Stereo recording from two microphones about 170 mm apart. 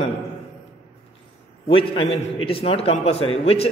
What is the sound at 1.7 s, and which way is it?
A man's voice, 35° left (ahead or behind).